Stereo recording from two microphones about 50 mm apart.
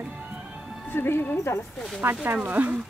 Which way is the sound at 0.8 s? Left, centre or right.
Left.